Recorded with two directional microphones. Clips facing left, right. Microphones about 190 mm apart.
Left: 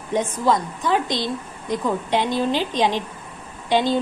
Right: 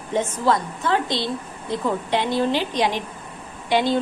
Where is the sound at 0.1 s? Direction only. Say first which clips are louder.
Left 1 dB; 15° left (ahead or behind).